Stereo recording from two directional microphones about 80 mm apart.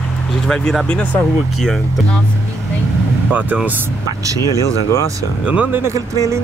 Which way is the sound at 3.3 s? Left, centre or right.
Right.